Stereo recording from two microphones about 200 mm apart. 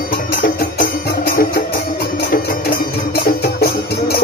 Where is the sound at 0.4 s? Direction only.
45° left (ahead or behind).